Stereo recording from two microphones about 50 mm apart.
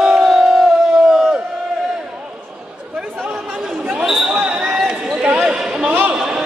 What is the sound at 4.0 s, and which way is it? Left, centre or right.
Basketball bounce, centre.